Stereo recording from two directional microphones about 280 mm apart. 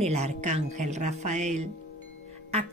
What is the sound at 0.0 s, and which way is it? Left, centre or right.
Speech, right.